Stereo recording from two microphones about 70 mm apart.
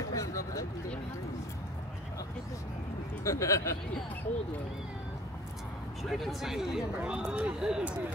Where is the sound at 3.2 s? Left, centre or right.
Left.